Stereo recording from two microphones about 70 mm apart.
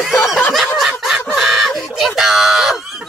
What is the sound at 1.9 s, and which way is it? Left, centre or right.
Speech, centre.